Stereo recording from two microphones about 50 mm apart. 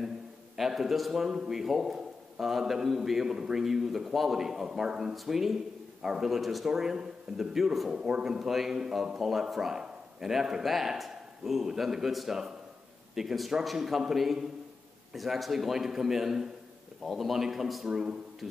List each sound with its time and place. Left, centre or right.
0.6 s a man's voice: centre
1.3 s a man's voice: centre
1.6 s a man's voice: centre
5.1 s a man's voice: centre